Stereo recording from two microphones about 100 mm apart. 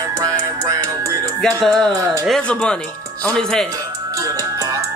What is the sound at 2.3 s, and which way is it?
Speech, 10° left (ahead or behind).